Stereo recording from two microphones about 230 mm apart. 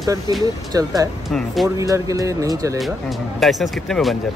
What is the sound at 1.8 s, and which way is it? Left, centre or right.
Speech, centre.